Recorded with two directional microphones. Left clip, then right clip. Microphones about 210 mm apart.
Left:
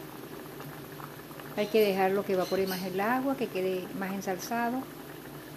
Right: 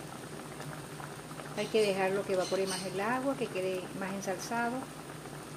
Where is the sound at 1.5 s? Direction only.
20° left (ahead or behind).